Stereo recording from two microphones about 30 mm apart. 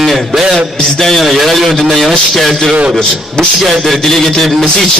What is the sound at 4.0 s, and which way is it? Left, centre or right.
Speech, centre.